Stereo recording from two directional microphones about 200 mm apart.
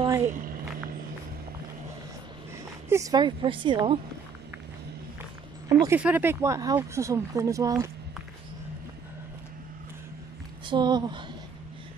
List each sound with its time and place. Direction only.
0.3 s a sound: 45° right (ahead or behind)
2.9 s a woman's voice: 15° right (ahead or behind)
5.7 s speech: 15° right (ahead or behind)
10.7 s a woman's voice: 20° right (ahead or behind)